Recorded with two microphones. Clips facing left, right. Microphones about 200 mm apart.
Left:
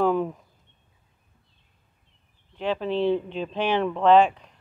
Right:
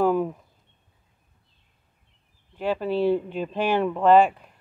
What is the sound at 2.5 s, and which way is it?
Speech, 10° right (ahead or behind).